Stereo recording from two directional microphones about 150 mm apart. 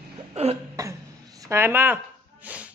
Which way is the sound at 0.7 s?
25° right (ahead or behind).